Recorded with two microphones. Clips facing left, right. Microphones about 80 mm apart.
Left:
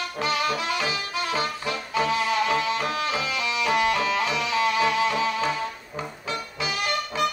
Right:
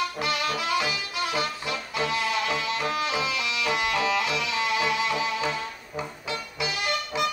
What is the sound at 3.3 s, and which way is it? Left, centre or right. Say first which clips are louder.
Music: left 3 dB; left.